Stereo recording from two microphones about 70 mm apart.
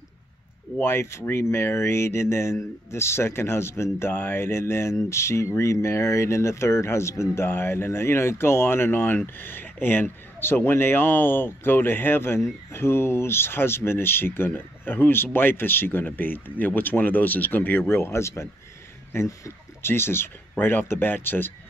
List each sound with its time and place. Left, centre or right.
0.7 s speech: left